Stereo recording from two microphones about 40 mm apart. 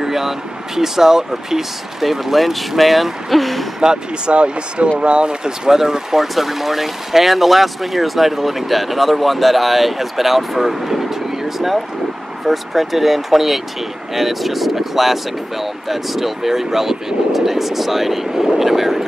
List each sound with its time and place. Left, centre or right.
0.0 s speech: centre
3.8 s speech: right; by 19.0 s centre